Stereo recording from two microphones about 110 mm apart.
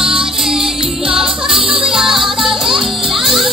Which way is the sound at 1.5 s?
55° right (ahead or behind).